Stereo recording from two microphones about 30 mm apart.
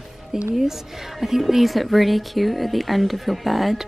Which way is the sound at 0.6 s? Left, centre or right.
Centre.